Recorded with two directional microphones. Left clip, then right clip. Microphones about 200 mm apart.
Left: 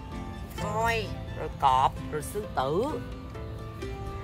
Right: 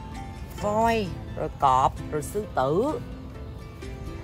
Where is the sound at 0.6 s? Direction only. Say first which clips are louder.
Right 5 dB; 35° right (ahead or behind).